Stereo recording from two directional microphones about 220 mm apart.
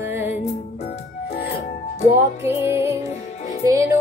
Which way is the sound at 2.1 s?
10° right (ahead or behind).